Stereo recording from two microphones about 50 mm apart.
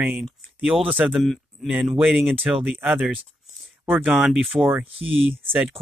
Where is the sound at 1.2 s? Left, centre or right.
Centre.